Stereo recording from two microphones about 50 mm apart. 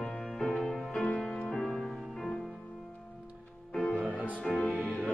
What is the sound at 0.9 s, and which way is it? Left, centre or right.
Music, left.